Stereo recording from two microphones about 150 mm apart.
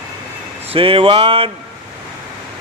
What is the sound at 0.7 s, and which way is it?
Speech, 40° right (ahead or behind).